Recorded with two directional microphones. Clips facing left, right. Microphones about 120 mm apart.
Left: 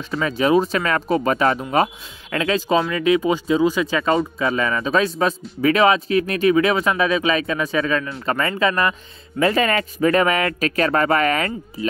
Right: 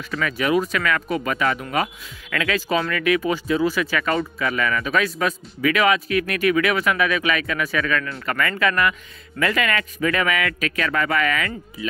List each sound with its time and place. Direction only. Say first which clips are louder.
0.1 s speech: left 4 dB; 25° left (ahead or behind)